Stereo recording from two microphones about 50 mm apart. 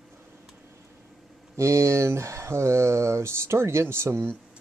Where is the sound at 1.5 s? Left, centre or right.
Right.